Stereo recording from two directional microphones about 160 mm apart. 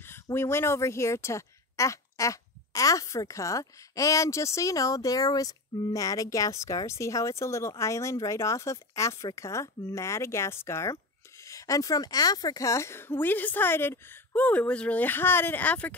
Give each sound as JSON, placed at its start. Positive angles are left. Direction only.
{"t": 0.0, "sound": "speech", "side_deg": 15}